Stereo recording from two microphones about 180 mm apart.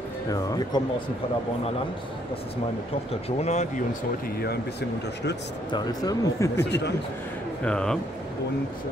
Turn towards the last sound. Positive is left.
turn(degrees=5)  # may be behind; listen again after turning